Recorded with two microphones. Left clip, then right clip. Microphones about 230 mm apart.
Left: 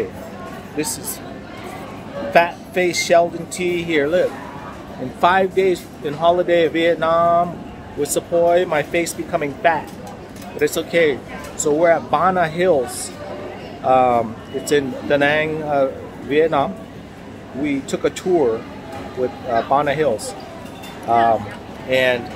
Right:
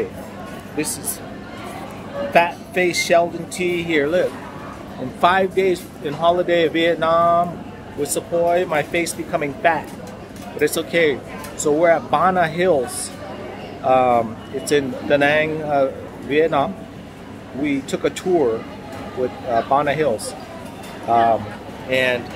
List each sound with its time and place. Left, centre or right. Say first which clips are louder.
0.8 s speech: left 1 dB; centre
2.3 s speech: left 1 dB; centre
8.0 s speech: left 3 dB; left
8.7 s speech: left 1 dB; centre
19.5 s speech: even; centre
21.8 s speech: left 2 dB; centre